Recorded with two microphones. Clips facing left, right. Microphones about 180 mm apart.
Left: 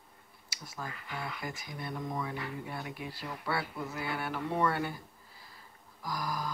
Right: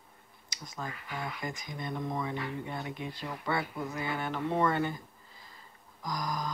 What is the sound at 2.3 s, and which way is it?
Speech, 5° left (ahead or behind).